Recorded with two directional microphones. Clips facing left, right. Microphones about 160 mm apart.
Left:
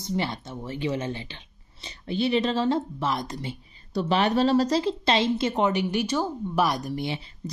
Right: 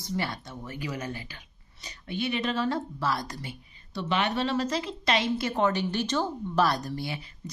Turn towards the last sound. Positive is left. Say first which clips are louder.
# left 4 dB
turn(degrees=25)  # may be behind; listen again after turning